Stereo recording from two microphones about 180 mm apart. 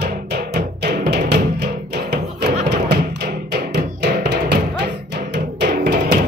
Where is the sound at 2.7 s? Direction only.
65° right (ahead or behind).